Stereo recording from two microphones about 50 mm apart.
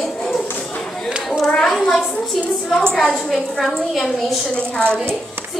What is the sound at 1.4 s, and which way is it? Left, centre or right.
Speech, centre.